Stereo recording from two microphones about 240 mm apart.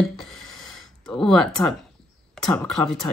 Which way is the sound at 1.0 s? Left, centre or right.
Centre.